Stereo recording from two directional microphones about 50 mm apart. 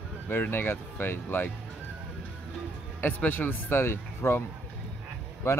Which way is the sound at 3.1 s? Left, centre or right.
Left.